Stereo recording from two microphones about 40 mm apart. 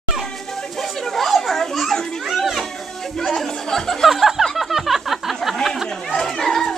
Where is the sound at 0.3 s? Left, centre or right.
Centre.